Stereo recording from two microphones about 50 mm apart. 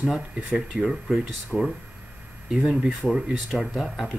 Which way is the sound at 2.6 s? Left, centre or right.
Centre.